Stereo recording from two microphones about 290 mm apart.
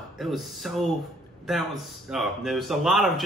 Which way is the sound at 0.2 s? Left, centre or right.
Centre.